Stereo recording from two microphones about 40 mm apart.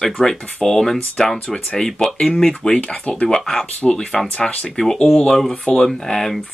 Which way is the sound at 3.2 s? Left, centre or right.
Centre.